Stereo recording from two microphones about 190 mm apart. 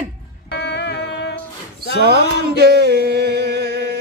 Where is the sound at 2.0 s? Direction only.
60° right (ahead or behind).